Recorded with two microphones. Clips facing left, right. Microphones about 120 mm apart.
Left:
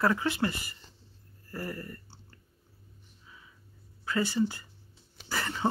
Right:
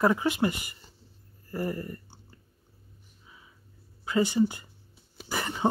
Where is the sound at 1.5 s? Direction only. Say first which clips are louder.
Right 6 dB; 20° right (ahead or behind).